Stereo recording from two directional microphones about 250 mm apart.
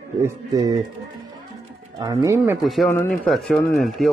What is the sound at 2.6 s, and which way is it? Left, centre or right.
Speech, centre.